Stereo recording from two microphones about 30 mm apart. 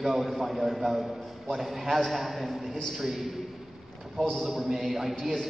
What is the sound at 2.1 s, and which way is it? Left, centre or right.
Speech, centre.